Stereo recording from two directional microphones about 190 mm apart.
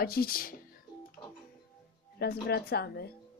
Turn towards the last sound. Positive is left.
turn(degrees=55)  # may be behind; listen again after turning